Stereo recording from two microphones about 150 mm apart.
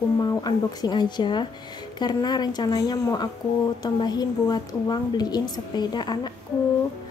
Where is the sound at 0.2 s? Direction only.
25° left (ahead or behind).